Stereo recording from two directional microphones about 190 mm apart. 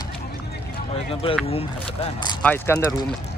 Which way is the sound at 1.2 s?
30° left (ahead or behind).